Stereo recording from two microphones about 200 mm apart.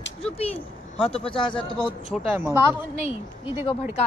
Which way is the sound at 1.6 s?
5° left (ahead or behind).